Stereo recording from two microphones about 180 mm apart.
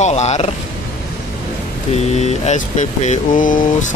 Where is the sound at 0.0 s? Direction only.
40° left (ahead or behind).